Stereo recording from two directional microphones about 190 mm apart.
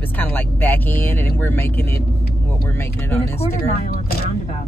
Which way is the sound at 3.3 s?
35° left (ahead or behind).